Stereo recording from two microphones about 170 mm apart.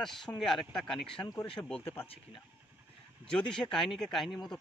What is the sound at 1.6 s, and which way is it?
Speech, 15° left (ahead or behind).